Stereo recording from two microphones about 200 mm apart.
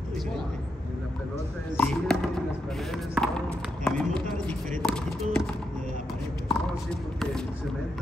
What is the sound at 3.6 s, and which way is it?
Clip-clop, 5° left (ahead or behind).